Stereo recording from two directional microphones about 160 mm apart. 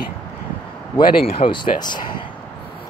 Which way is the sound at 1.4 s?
30° left (ahead or behind).